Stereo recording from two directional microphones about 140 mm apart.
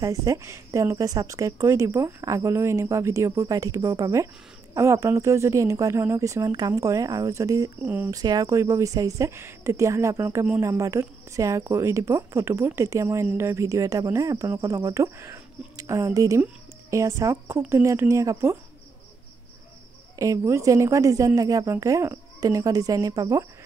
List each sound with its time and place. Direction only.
0.0 s speech: 25° right (ahead or behind)
7.8 s speech: 10° right (ahead or behind)
8.1 s speech: 25° right (ahead or behind)
20.2 s speech: 20° right (ahead or behind)